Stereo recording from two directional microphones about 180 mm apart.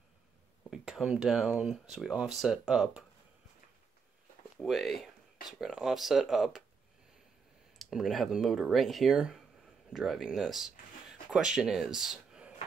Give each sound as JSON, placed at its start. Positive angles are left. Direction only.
{"t": 0.7, "sound": "speech", "side_deg": 0}
{"t": 4.6, "sound": "speech", "side_deg": 0}
{"t": 7.8, "sound": "speech", "side_deg": 0}